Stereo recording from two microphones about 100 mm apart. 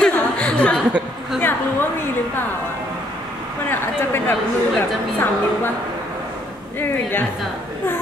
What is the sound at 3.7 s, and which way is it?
Speech, 20° left (ahead or behind).